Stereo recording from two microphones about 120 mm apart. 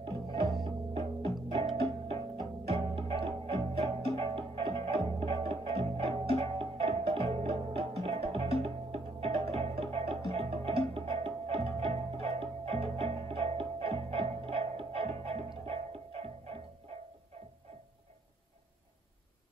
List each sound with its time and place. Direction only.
0.7 s music: 50° right (ahead or behind)
2.7 s music: 50° right (ahead or behind)